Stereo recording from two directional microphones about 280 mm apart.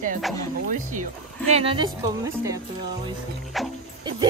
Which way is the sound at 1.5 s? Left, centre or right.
Centre.